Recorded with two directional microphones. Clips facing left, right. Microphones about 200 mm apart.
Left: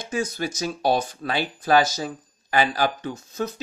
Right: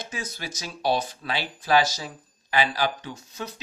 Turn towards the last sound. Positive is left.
turn(degrees=45)  # may be behind; listen again after turning